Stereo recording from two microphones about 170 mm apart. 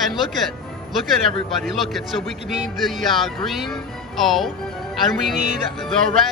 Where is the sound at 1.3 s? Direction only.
Centre (ahead or behind).